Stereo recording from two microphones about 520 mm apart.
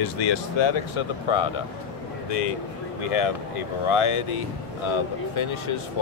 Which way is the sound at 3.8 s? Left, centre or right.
Left.